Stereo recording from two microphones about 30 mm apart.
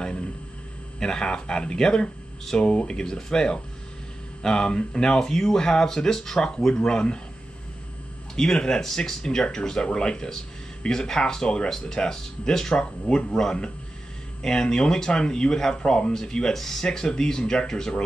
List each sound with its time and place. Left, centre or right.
0.9 s speech: left
2.9 s speech: centre
8.4 s speech: left
16.5 s speech: centre
16.8 s speech: left